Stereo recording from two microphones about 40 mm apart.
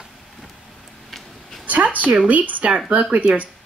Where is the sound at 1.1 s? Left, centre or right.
Centre.